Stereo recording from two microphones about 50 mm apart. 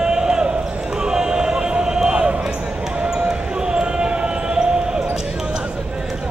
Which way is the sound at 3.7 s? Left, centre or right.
Centre.